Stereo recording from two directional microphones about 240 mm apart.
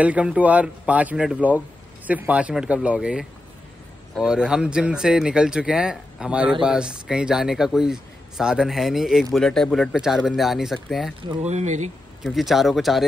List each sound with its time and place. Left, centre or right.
0.0 s a man's voice: centre
11.2 s speech: right
12.2 s a man's voice: centre